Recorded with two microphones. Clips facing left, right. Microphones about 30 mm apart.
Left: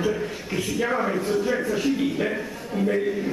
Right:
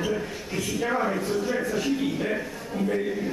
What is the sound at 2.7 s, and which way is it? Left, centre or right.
Speech, centre.